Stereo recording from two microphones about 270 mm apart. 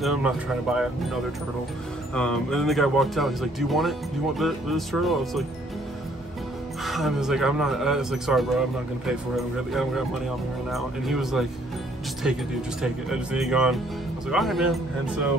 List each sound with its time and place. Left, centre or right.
0.0 s speech: centre
2.1 s speech: centre
6.8 s speech: centre
12.8 s speech: centre